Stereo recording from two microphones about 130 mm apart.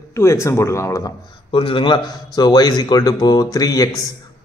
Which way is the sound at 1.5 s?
40° left (ahead or behind).